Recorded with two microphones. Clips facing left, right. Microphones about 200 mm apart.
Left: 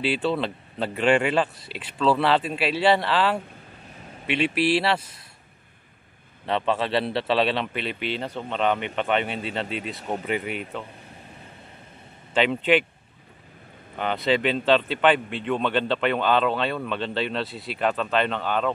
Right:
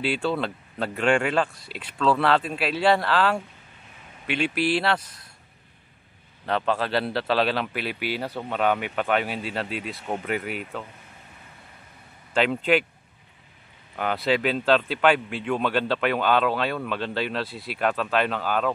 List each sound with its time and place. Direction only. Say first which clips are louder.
0.0 s speech: left 1 dB; centre (ahead or behind)
6.4 s speech: left 1 dB; centre (ahead or behind)
12.4 s speech: left 1 dB; centre (ahead or behind)
13.9 s speech: left 1 dB; 5° right (ahead or behind)